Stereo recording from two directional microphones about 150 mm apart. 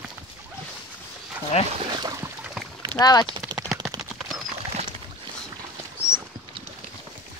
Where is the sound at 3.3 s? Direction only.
30° right (ahead or behind).